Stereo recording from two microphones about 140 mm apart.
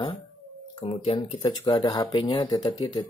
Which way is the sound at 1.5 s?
30° left (ahead or behind).